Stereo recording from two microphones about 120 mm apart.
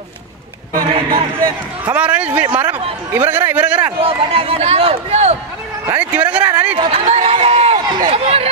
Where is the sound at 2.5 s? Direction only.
15° right (ahead or behind).